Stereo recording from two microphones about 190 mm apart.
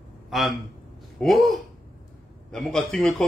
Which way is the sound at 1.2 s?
Centre (ahead or behind).